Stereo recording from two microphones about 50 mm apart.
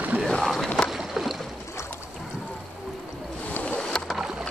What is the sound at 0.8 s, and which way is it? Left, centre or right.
Boat, centre.